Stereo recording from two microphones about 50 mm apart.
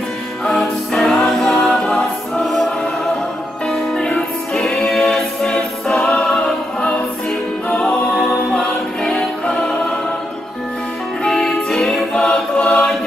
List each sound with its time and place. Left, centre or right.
0.5 s choir: centre
2.4 s choir: centre
3.6 s music: centre
7.7 s music: centre
11.2 s music: centre
12.5 s choir: centre